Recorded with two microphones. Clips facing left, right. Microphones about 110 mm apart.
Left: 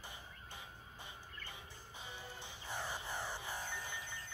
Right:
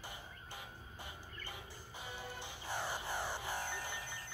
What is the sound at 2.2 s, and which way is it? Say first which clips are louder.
Music: right 4 dB; 75° right (ahead or behind).